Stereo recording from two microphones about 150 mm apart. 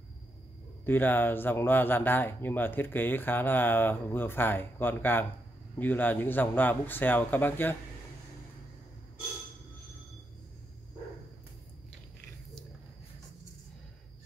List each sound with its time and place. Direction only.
0.8 s speech: 15° left (ahead or behind)